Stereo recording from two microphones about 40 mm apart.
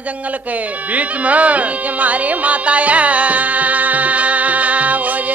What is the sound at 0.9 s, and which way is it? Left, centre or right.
Music, right.